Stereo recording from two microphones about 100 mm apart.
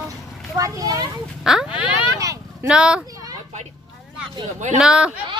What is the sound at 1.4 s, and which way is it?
Speech, 5° right (ahead or behind).